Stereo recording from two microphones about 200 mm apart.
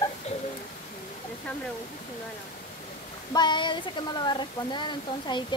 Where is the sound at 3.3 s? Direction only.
20° left (ahead or behind).